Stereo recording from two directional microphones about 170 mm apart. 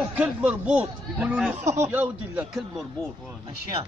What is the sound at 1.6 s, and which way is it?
Speech, 45° right (ahead or behind).